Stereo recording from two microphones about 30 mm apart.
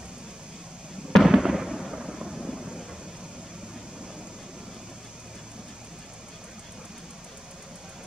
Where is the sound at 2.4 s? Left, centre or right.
Right.